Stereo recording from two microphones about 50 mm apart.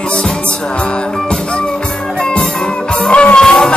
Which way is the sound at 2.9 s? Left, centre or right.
Centre.